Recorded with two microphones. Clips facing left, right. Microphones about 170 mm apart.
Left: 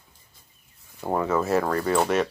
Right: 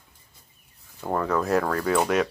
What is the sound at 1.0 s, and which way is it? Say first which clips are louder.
Speech: left 1 dB; 10° left (ahead or behind).